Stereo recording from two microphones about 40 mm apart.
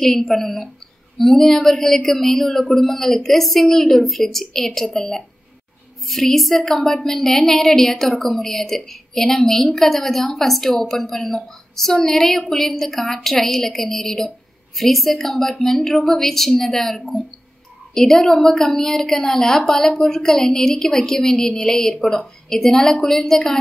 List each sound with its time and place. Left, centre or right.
0.0 s a woman's voice: centre
6.7 s a woman's voice: centre